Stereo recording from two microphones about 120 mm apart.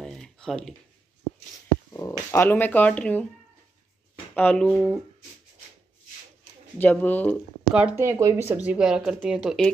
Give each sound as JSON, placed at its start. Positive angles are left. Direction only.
{"t": 0.0, "sound": "typing", "side_deg": 5}
{"t": 2.0, "sound": "speech", "side_deg": 25}
{"t": 4.4, "sound": "speech", "side_deg": 10}
{"t": 4.7, "sound": "speech", "side_deg": -5}
{"t": 6.8, "sound": "speech", "side_deg": 15}
{"t": 7.7, "sound": "speech", "side_deg": -10}
{"t": 8.0, "sound": "speech", "side_deg": -25}
{"t": 8.6, "sound": "speech", "side_deg": -5}